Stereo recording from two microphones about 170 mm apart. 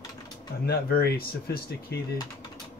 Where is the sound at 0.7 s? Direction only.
65° left (ahead or behind).